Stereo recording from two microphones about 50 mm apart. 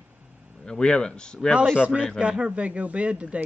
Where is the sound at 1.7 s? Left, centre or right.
Centre.